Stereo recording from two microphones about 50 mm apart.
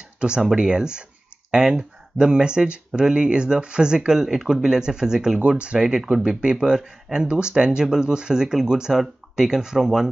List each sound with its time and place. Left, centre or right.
0.2 s speech: centre